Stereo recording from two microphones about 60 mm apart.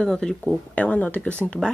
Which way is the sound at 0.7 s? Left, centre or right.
Left.